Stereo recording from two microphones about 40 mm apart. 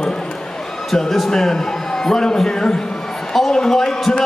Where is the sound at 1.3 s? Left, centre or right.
Centre.